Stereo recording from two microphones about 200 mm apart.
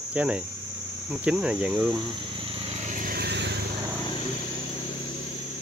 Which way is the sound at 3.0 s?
50° right (ahead or behind).